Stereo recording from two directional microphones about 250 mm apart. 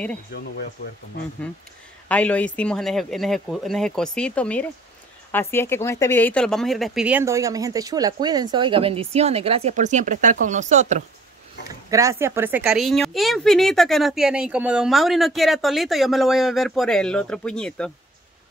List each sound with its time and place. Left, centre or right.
0.3 s speech: left
2.0 s a woman's voice: centre; by 11.1 s right
11.9 s a woman's voice: centre